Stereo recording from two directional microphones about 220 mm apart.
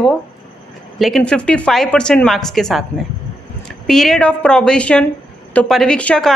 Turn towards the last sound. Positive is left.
turn(degrees=5)  # may be behind; listen again after turning